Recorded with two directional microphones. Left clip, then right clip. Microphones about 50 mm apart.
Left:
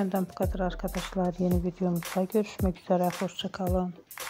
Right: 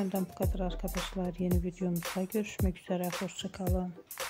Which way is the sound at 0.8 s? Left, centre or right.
Centre.